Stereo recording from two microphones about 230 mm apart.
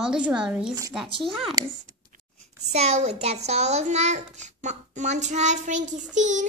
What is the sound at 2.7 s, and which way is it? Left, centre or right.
A child's voice, right.